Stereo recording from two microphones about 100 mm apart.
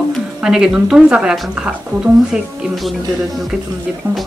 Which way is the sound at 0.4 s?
5° right (ahead or behind).